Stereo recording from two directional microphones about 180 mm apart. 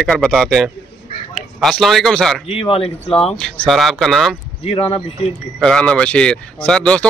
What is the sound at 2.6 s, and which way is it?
Speech, 30° left (ahead or behind).